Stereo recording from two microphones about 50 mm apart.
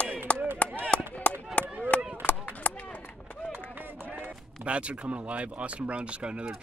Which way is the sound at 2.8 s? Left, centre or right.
Left.